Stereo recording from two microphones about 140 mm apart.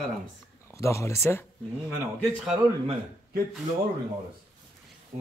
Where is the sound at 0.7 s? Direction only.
20° left (ahead or behind).